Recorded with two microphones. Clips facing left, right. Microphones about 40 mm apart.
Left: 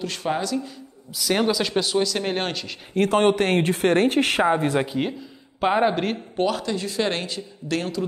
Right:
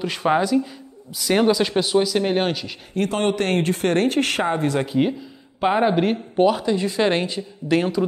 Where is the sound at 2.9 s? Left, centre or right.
Left.